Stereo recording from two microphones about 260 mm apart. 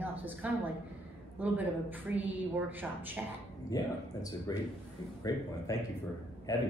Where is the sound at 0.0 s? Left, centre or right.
Centre.